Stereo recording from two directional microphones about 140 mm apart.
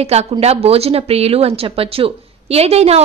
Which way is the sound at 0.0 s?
50° right (ahead or behind).